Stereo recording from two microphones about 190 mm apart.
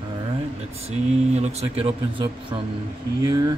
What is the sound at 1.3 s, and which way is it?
Speech, 35° right (ahead or behind).